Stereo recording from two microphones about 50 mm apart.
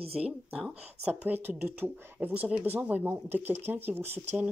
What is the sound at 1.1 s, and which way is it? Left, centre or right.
Speech, right.